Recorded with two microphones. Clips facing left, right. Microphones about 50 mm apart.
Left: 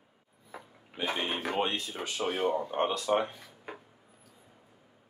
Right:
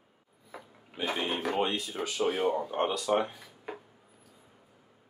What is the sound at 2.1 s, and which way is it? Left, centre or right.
Speech, centre.